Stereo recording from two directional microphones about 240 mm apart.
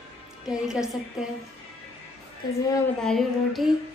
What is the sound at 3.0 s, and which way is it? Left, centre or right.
Speech, centre.